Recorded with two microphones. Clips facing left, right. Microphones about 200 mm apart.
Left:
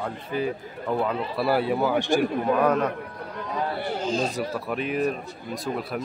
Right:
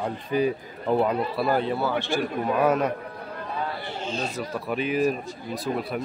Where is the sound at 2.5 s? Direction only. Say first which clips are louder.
Right 2 dB; 5° right (ahead or behind).